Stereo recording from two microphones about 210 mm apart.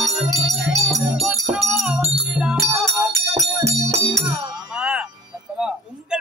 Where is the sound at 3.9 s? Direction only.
15° right (ahead or behind).